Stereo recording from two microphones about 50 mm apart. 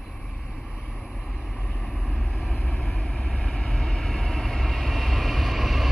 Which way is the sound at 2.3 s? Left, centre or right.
Centre.